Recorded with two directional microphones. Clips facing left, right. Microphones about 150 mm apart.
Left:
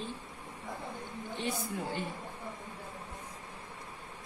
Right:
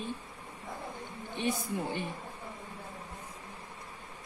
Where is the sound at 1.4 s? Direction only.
15° right (ahead or behind).